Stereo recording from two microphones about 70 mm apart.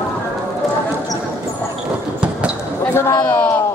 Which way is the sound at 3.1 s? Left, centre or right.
Left.